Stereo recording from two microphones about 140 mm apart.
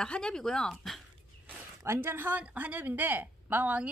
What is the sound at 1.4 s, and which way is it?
Speech, 15° right (ahead or behind).